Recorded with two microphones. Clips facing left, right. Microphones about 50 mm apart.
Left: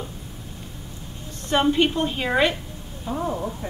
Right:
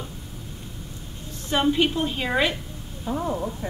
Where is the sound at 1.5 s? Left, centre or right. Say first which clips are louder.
Left 2 dB; centre.